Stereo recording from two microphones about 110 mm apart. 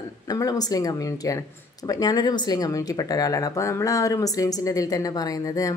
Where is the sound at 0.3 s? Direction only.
35° left (ahead or behind).